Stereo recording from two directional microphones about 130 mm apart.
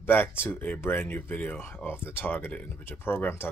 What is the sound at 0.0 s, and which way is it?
Speech, 15° left (ahead or behind).